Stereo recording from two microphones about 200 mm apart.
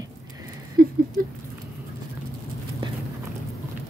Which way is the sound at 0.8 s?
45° right (ahead or behind).